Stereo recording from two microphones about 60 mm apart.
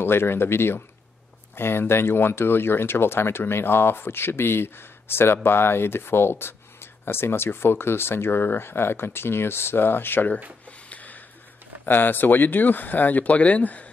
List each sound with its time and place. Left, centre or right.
0.0 s speech: left
10.9 s a sound: left
11.8 s speech: left